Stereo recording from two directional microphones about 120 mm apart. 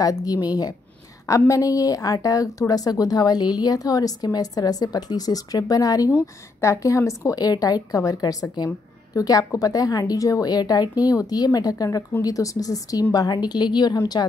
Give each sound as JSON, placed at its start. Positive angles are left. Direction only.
{"t": 0.0, "sound": "a woman's voice", "side_deg": 30}
{"t": 1.5, "sound": "a woman's voice", "side_deg": 30}